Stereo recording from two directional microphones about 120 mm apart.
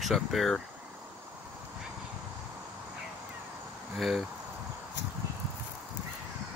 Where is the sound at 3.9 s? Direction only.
Centre (ahead or behind).